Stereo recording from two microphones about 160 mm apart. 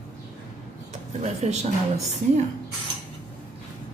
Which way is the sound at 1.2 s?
45° right (ahead or behind).